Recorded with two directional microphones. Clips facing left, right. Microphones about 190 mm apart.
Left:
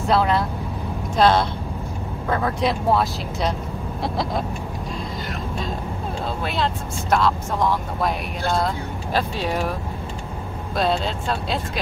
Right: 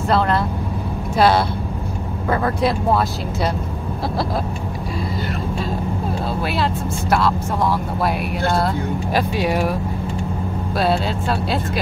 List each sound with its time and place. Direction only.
0.1 s speech: centre (ahead or behind)
6.4 s speech: 5° right (ahead or behind)
10.8 s speech: 5° right (ahead or behind)